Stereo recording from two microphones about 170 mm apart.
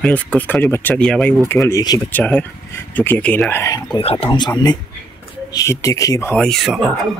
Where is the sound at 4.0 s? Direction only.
35° left (ahead or behind).